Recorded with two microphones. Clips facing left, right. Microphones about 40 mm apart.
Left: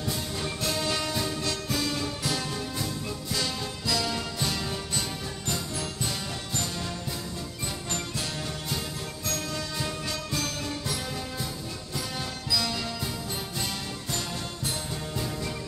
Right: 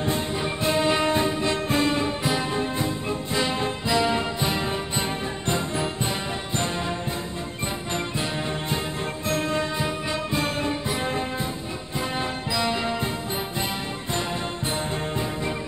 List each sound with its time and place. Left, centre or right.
0.0 s music: right
9.3 s music: right
12.4 s music: right